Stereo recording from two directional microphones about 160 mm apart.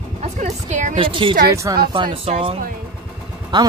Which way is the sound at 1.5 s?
20° right (ahead or behind).